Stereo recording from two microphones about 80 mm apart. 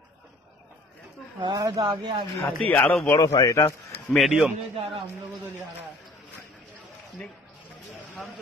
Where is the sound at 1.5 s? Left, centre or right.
Right.